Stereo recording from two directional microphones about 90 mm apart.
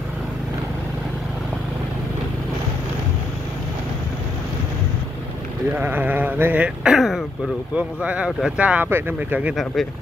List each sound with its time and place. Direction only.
5.8 s sheep: 20° right (ahead or behind); by 7.2 s 5° right (ahead or behind)
7.7 s speech: 15° right (ahead or behind)
8.3 s speech: 5° right (ahead or behind)
8.5 s speech: 15° right (ahead or behind)
8.9 s sheep: 20° right (ahead or behind)